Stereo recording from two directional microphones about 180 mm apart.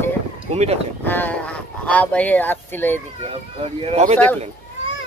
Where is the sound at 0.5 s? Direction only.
35° right (ahead or behind).